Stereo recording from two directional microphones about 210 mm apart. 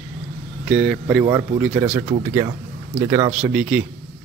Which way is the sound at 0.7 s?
5° right (ahead or behind).